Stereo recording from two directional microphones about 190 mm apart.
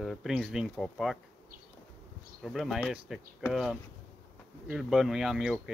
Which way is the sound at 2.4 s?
Centre (ahead or behind).